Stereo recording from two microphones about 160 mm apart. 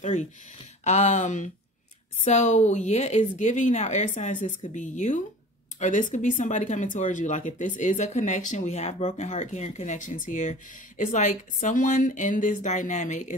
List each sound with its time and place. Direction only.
0.0 s speech: 50° left (ahead or behind)